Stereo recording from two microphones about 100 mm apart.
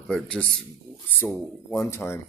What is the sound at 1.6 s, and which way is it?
Speech, 25° left (ahead or behind).